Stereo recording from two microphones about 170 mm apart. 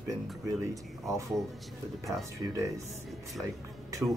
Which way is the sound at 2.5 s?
20° right (ahead or behind).